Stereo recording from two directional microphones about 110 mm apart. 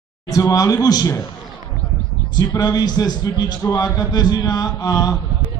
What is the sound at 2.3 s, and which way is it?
Speech, 35° left (ahead or behind).